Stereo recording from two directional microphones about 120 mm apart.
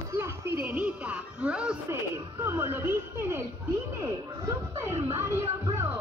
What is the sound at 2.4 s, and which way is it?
Speech, 20° right (ahead or behind).